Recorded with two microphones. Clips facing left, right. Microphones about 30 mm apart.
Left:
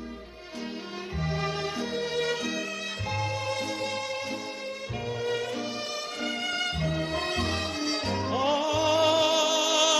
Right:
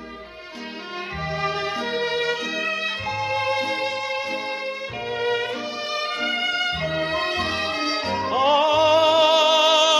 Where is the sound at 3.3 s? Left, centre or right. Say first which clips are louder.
Right 8 dB; right.